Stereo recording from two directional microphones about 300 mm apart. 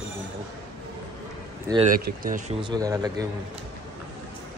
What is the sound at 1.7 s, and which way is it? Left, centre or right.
Speech, centre.